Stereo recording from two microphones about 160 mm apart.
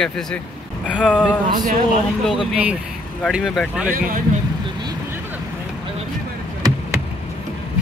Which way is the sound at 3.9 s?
60° right (ahead or behind).